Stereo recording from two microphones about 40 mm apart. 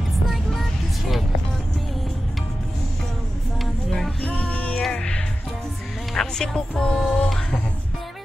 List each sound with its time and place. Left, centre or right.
0.3 s vehicle: centre
3.6 s a sound: centre
4.2 s music: left
6.1 s music: centre